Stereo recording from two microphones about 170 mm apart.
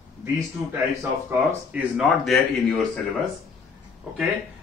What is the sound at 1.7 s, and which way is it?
A man's voice, 5° right (ahead or behind).